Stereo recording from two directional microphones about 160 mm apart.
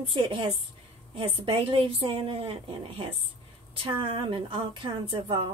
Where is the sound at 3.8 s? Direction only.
35° right (ahead or behind).